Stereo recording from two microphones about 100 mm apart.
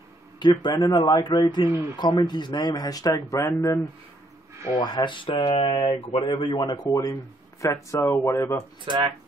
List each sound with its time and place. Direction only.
0.4 s a man's voice: 50° left (ahead or behind); by 1.2 s 35° left (ahead or behind)
1.2 s speech: 45° left (ahead or behind)
1.7 s speech: 30° right (ahead or behind)
2.0 s speech: 45° left (ahead or behind); by 3.8 s 30° left (ahead or behind)
4.7 s a man's voice: 45° left (ahead or behind); by 8.6 s 30° left (ahead or behind)